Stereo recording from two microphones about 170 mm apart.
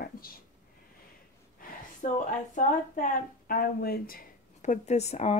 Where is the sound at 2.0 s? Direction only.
50° left (ahead or behind).